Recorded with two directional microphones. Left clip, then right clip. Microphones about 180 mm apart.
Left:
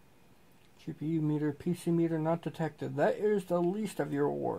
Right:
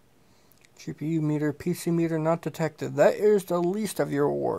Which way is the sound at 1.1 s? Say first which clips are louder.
Right 5 dB; 30° right (ahead or behind).